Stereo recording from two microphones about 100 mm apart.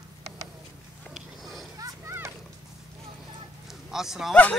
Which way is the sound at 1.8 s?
35° right (ahead or behind).